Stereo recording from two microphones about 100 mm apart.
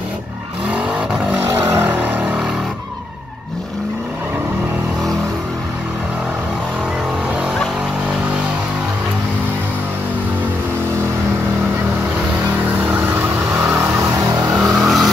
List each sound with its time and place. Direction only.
0.7 s vehicle: 10° right (ahead or behind)
1.5 s vehicle: 25° right (ahead or behind)
12.8 s vehicle: 15° right (ahead or behind)
14.6 s vehicle: centre (ahead or behind)